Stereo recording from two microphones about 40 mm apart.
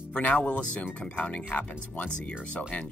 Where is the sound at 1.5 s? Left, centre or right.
Left.